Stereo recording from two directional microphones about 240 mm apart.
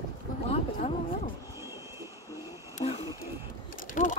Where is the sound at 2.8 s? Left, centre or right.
Left.